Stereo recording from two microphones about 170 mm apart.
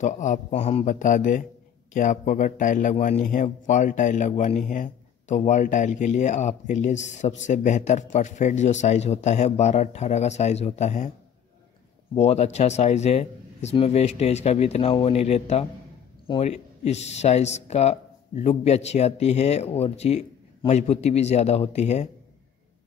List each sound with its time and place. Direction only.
0.0 s a man's voice: 45° left (ahead or behind)
12.2 s speech: 40° left (ahead or behind)